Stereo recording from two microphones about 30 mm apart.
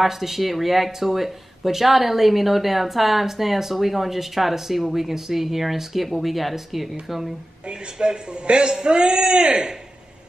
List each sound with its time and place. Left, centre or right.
0.0 s speech: centre
7.6 s a man's voice: right